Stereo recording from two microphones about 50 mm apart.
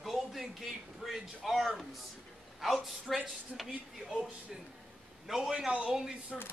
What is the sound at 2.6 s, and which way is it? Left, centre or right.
A man's voice, centre.